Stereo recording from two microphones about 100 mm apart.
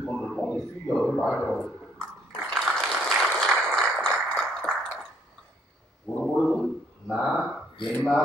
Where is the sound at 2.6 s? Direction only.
5° left (ahead or behind).